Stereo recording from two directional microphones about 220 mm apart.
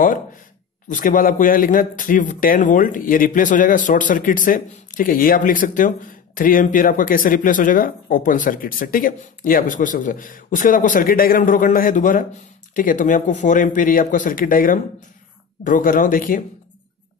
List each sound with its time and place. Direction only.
0.8 s speech: 35° left (ahead or behind)